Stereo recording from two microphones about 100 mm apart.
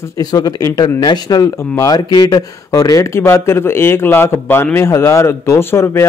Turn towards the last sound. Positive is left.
turn(degrees=25)  # may be behind; listen again after turning